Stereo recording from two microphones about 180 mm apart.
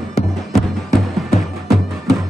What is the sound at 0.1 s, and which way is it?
Music, centre (ahead or behind).